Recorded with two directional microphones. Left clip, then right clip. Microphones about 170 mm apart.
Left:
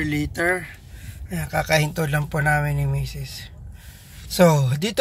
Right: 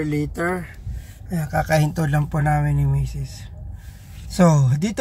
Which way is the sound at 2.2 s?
10° right (ahead or behind).